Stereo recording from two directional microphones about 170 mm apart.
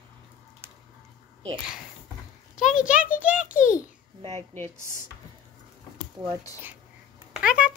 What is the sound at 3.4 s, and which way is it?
Speech, 50° left (ahead or behind).